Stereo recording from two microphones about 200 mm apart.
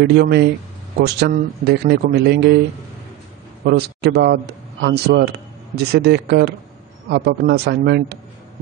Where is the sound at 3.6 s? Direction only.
55° right (ahead or behind).